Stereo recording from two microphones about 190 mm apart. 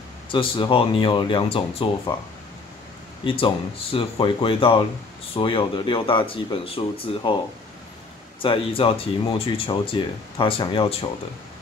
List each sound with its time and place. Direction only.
0.3 s speech: 25° left (ahead or behind)
3.3 s speech: 30° left (ahead or behind)
8.4 s speech: 30° left (ahead or behind)